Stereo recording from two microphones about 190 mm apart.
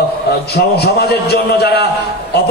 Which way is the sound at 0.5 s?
60° left (ahead or behind).